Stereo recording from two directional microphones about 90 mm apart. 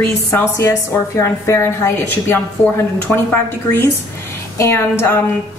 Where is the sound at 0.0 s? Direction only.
30° left (ahead or behind).